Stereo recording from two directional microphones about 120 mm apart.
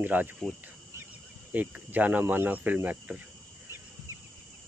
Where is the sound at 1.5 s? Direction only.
15° right (ahead or behind).